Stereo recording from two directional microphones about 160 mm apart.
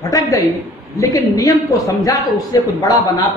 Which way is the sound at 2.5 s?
20° left (ahead or behind).